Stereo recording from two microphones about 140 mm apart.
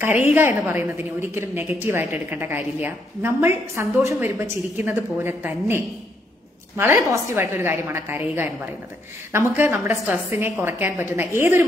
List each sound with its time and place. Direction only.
0.0 s a woman's voice: 15° right (ahead or behind)
9.7 s a woman's voice: 15° right (ahead or behind)